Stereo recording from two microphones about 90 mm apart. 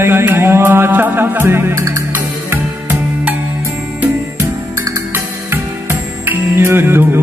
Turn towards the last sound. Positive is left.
turn(degrees=-25)  # may be behind; listen again after turning